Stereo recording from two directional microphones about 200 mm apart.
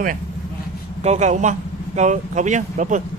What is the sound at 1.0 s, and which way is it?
Speech, 35° right (ahead or behind).